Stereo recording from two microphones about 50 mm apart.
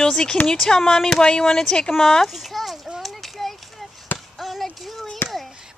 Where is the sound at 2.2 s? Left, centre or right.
Centre.